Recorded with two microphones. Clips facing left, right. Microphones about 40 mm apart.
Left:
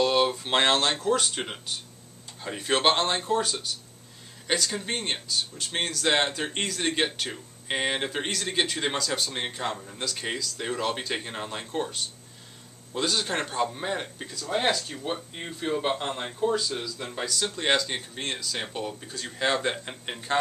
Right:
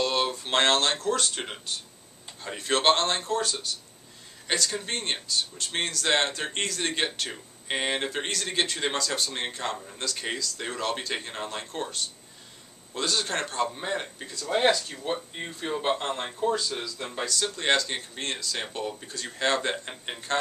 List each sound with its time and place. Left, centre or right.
0.0 s speech: centre